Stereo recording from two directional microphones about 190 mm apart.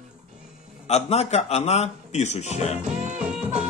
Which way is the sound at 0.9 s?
35° left (ahead or behind).